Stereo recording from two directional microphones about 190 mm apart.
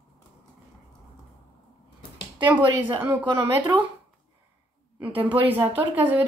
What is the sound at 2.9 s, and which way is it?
Speech, 15° right (ahead or behind).